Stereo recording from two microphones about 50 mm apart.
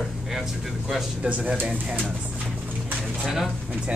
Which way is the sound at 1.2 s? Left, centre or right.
Right.